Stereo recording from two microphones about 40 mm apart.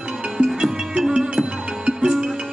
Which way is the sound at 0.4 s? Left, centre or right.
Centre.